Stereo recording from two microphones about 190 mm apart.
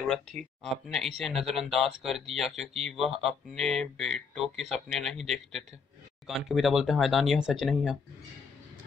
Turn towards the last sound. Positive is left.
turn(degrees=0)  # may be behind; listen again after turning